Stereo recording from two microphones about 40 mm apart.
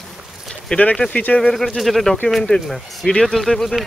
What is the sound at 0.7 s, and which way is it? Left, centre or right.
Speech, left.